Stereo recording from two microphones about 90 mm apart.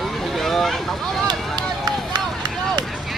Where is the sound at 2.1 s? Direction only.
50° right (ahead or behind).